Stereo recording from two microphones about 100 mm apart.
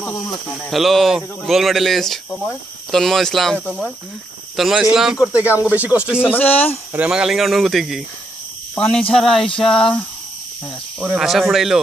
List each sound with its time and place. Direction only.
0.6 s speech: centre (ahead or behind)
5.3 s speech: 15° right (ahead or behind)
6.2 s speech: 15° left (ahead or behind)
6.9 s speech: 10° right (ahead or behind)
8.7 s speech: 10° left (ahead or behind)
11.0 s speech: 5° right (ahead or behind)